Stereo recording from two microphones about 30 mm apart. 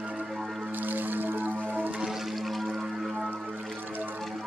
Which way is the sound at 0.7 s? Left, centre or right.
Right.